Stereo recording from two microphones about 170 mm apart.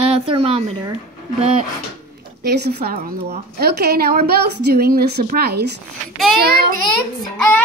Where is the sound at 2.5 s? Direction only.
75° right (ahead or behind).